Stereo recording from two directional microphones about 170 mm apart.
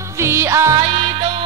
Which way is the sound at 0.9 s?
30° right (ahead or behind).